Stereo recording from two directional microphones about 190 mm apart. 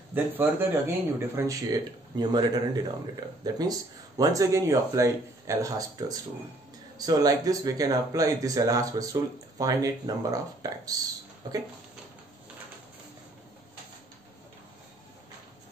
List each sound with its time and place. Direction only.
0.1 s speech: 10° right (ahead or behind)